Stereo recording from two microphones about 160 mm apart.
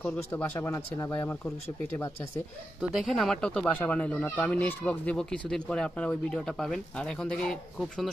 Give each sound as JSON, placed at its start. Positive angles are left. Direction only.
{"t": 0.0, "sound": "speech", "side_deg": 10}
{"t": 2.9, "sound": "speech", "side_deg": 0}